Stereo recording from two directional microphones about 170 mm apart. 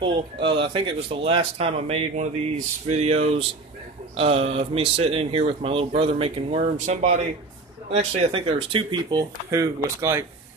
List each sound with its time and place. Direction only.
0.0 s speech: 30° right (ahead or behind)
9.5 s speech: 15° right (ahead or behind)